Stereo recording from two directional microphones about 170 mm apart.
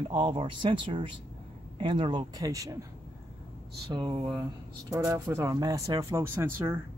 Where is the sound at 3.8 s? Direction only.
30° right (ahead or behind).